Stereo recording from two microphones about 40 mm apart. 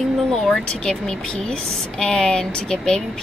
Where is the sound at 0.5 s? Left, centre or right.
Centre.